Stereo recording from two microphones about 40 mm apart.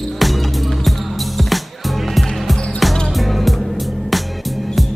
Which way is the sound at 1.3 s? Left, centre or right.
Centre.